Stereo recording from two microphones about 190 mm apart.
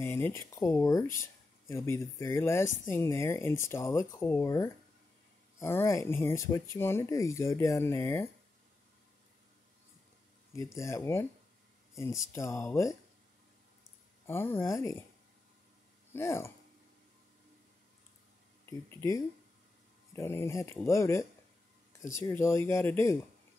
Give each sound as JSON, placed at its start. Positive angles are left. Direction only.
{"t": 0.0, "sound": "speech", "side_deg": 10}
{"t": 10.5, "sound": "speech", "side_deg": 15}
{"t": 14.2, "sound": "speech", "side_deg": 10}
{"t": 16.1, "sound": "speech", "side_deg": 15}
{"t": 18.9, "sound": "speech", "side_deg": 15}